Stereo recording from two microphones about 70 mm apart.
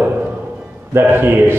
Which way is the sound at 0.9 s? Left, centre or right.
Right.